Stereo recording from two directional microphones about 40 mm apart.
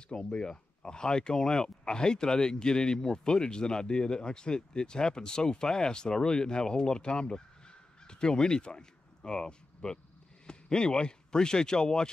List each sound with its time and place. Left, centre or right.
0.1 s speech: left